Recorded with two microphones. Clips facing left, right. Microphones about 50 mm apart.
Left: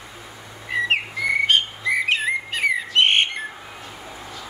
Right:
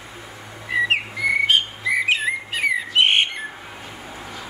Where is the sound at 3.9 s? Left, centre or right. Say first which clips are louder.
Right 1 dB; centre.